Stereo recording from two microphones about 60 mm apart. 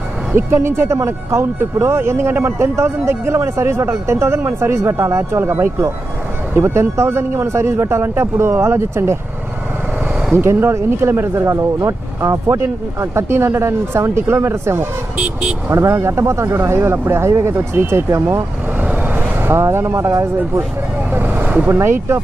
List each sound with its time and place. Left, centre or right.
0.3 s speech: right
10.3 s speech: right
12.4 s speech: right
21.1 s vehicle: right
21.6 s speech: right